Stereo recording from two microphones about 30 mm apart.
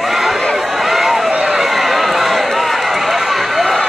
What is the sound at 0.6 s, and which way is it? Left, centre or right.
Run, centre.